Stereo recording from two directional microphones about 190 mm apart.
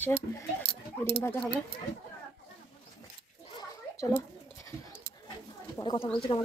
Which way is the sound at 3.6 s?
15° left (ahead or behind).